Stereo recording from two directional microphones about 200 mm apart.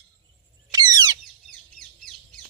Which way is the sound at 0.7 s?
20° right (ahead or behind).